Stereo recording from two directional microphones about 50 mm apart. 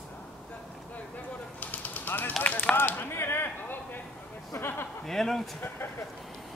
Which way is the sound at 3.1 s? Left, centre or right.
Left.